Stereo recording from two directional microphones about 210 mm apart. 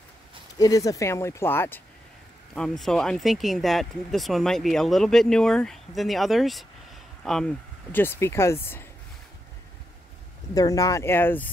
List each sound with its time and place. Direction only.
0.6 s speech: 15° left (ahead or behind)
10.5 s speech: 15° left (ahead or behind)